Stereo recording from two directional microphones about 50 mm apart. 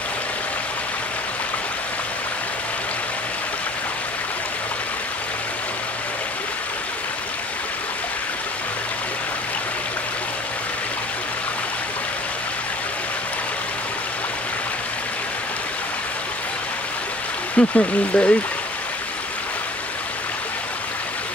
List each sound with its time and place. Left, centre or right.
17.6 s speech: left